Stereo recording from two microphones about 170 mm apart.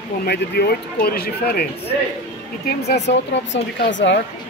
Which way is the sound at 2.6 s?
80° left.